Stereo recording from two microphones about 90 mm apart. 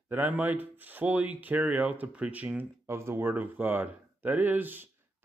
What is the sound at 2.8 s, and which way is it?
Speech, 30° right (ahead or behind).